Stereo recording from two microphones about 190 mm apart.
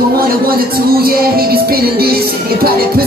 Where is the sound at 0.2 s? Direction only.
50° right (ahead or behind).